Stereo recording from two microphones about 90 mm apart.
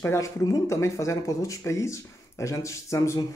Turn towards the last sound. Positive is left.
turn(degrees=35)  # may be behind; listen again after turning